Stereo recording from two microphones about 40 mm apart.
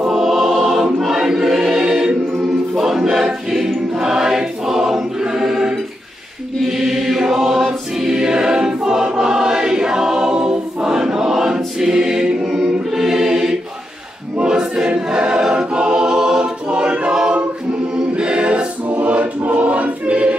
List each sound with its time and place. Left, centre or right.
0.1 s music: centre
1.0 s choir: centre
6.8 s choir: centre; by 18.7 s right
18.9 s choir: right